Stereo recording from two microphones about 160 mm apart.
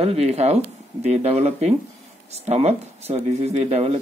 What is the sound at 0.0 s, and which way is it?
Speech, 40° right (ahead or behind).